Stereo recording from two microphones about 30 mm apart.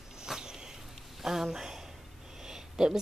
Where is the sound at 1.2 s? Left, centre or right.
Centre.